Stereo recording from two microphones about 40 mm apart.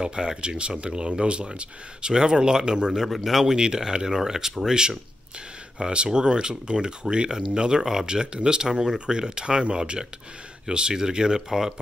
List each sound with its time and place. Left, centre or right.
0.0 s speech: centre
3.5 s speech: centre